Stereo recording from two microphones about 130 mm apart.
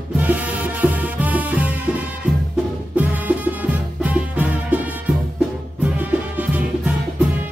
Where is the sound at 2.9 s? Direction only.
10° right (ahead or behind).